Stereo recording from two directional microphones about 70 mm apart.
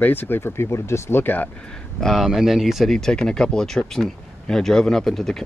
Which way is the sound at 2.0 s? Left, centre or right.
Centre.